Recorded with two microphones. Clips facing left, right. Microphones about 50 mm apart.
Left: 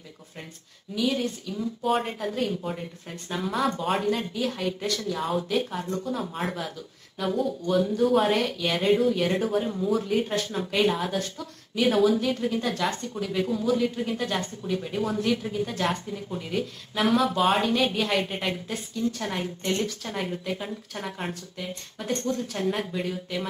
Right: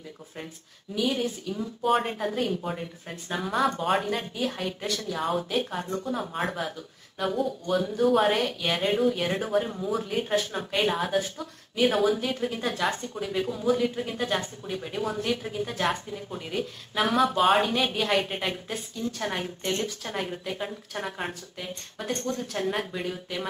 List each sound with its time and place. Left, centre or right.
0.9 s a woman's voice: centre
7.9 s speech: centre